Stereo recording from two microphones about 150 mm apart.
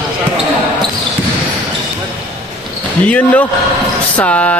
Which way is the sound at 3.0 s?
10° left (ahead or behind).